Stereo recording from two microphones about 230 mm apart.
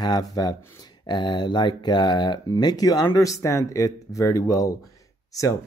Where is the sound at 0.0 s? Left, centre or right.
Centre.